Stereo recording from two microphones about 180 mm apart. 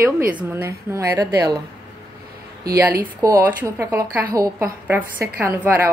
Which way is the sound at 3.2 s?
15° right (ahead or behind).